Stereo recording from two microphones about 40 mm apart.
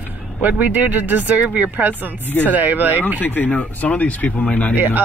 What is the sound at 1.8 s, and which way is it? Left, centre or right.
Speech, right.